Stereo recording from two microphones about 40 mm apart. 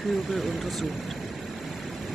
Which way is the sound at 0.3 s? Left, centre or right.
Centre.